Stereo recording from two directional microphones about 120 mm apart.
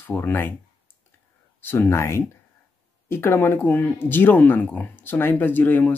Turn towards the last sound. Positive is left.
turn(degrees=15)  # may be behind; listen again after turning